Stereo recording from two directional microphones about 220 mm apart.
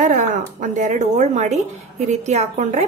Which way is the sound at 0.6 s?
35° right (ahead or behind).